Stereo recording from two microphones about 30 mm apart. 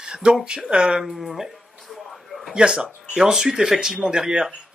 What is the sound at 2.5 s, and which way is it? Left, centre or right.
Speech, right.